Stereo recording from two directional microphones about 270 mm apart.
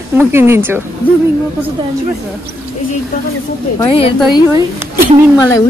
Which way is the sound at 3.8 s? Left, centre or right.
Centre.